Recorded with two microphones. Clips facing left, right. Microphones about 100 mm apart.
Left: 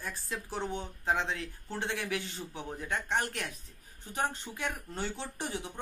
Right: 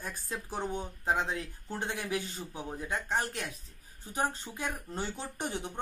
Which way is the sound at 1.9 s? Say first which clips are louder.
Right 1 dB; 25° right (ahead or behind).